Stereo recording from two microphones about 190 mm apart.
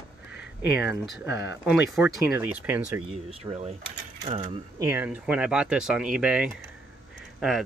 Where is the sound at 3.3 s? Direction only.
30° right (ahead or behind).